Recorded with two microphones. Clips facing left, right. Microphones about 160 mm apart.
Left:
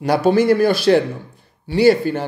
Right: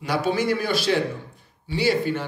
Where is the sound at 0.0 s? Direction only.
45° left (ahead or behind).